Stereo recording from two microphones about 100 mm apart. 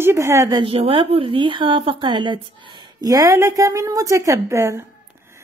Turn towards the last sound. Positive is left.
turn(degrees=-30)  # may be behind; listen again after turning